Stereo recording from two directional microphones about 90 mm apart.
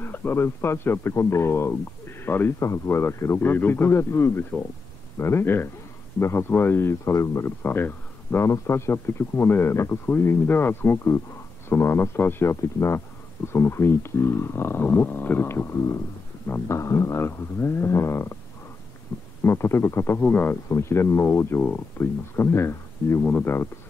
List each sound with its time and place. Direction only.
0.0 s speech: 25° left (ahead or behind)
16.4 s a sound: 30° left (ahead or behind)
19.4 s speech: 25° left (ahead or behind)
20.6 s speech: 30° left (ahead or behind)